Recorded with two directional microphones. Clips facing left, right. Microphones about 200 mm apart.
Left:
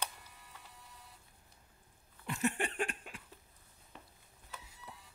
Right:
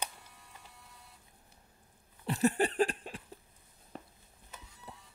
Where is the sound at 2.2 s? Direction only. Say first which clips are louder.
Right 6 dB; 35° right (ahead or behind).